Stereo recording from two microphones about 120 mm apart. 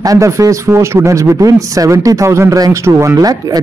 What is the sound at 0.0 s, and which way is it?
A man's voice, 25° right (ahead or behind).